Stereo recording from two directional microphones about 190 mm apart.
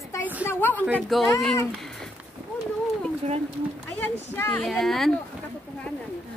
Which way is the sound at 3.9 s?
10° left (ahead or behind).